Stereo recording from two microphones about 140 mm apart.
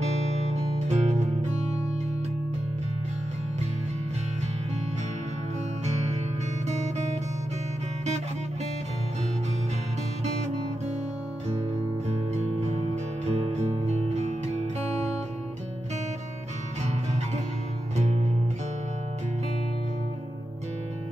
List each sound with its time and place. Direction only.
0.0 s music: 50° right (ahead or behind)
5.9 s music: 55° right (ahead or behind)
10.2 s music: 55° right (ahead or behind)
12.6 s music: 50° right (ahead or behind)
17.9 s music: 55° right (ahead or behind)